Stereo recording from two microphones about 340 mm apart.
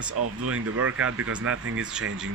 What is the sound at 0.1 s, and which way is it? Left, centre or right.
Speech, right.